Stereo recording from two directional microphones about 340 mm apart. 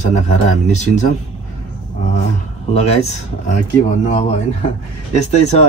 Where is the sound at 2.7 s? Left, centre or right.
Centre.